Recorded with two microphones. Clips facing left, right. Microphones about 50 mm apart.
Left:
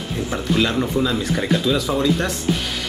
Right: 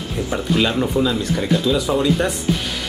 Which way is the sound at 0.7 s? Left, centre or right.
Centre.